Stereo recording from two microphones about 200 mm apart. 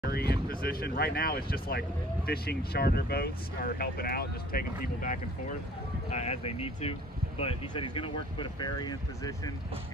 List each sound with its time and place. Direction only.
0.1 s speech: 50° left (ahead or behind)
6.0 s speech: 30° left (ahead or behind)